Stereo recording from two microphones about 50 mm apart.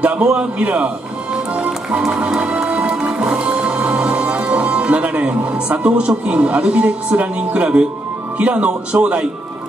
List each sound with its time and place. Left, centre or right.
0.0 s a man's voice: right
2.1 s music: right
8.4 s a man's voice: right